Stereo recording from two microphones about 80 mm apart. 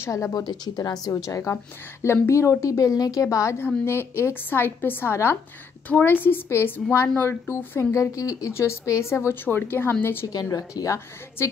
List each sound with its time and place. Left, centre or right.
0.0 s speech: left
1.1 s a woman's voice: left
3.5 s a woman's voice: left
7.9 s a woman's voice: left
10.2 s a woman's voice: left